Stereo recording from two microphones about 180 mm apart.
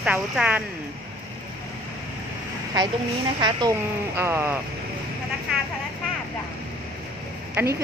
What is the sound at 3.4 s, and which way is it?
Speech, 25° right (ahead or behind).